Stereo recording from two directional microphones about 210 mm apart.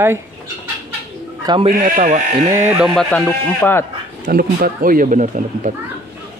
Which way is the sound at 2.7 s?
5° right (ahead or behind).